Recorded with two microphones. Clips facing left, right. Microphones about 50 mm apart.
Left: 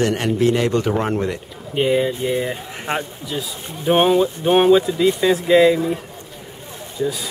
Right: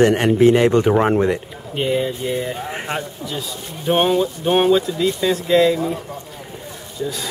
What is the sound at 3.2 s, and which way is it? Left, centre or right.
Speech, centre.